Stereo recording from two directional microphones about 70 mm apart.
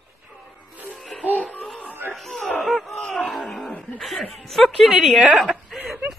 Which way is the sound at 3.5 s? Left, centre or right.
Centre.